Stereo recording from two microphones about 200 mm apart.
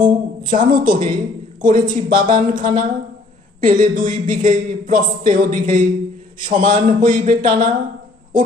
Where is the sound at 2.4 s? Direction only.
40° right (ahead or behind).